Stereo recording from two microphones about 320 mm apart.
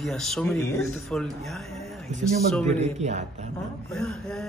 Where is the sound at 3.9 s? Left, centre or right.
Centre.